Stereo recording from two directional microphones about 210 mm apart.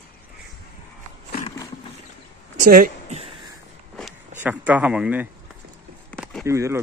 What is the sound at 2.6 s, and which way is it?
Speech, 40° right (ahead or behind).